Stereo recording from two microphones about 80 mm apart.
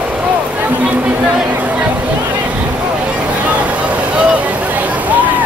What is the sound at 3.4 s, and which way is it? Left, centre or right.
Vehicle, centre.